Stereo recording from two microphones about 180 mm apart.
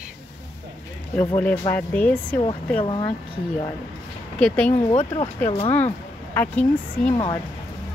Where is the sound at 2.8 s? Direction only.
25° left (ahead or behind).